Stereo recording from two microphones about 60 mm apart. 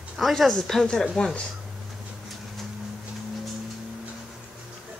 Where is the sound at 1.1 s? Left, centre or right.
Centre.